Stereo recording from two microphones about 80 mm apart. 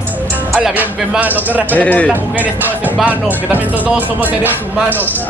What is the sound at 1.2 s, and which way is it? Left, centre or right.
Speech, right.